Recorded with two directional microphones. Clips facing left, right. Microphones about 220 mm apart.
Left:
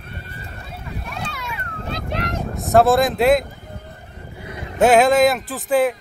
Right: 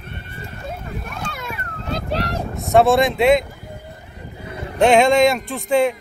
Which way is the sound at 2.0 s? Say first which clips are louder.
Right 2 dB; 35° right (ahead or behind).